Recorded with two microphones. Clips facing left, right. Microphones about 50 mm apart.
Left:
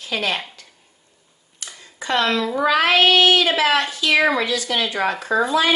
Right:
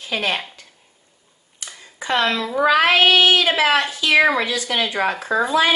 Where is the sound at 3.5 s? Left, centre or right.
Centre.